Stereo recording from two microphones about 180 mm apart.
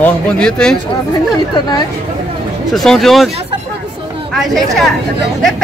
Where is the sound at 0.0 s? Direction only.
5° left (ahead or behind).